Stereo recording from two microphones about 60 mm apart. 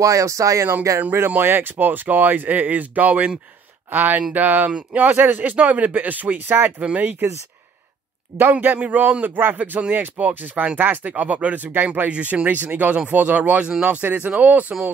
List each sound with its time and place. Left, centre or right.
0.0 s speech: right
1.4 s speech: right
8.4 s speech: right
8.7 s speech: right
12.1 s speech: right
13.8 s speech: right